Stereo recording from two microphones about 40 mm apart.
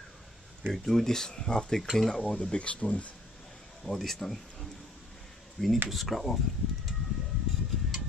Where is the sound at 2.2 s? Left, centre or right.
Left.